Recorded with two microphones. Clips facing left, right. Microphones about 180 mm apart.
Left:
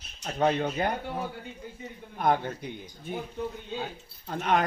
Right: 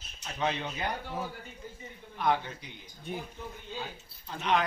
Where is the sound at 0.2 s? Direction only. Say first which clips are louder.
Left 7 dB; 50° left (ahead or behind).